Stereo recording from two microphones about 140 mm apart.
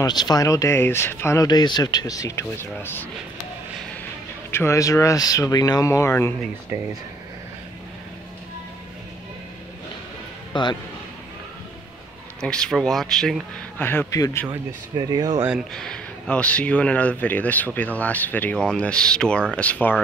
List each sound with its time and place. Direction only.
0.0 s speech: 30° left (ahead or behind)
4.5 s speech: 20° left (ahead or behind)
6.7 s speech: 20° right (ahead or behind)
10.5 s speech: 30° left (ahead or behind)
12.4 s speech: 5° left (ahead or behind)
13.7 s speech: 15° left (ahead or behind)
15.0 s speech: 30° right (ahead or behind)
15.7 s speech: 5° left (ahead or behind)